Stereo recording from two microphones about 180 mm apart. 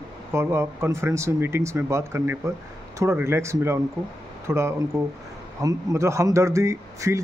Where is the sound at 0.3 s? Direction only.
15° right (ahead or behind).